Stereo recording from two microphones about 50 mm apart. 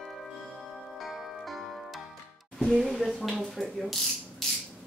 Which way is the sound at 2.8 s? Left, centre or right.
Centre.